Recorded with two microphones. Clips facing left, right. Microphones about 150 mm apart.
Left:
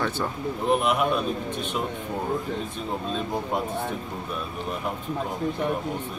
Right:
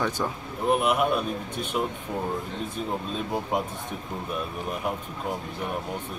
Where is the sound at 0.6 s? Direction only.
5° right (ahead or behind).